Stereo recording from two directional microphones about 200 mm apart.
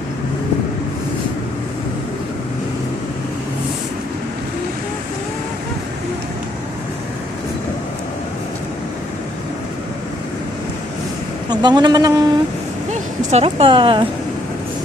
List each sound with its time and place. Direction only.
11.5 s a woman's voice: 20° right (ahead or behind)
12.9 s speech: 30° right (ahead or behind)